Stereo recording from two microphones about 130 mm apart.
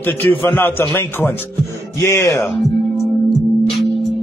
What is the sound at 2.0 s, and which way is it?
Speech, 20° left (ahead or behind).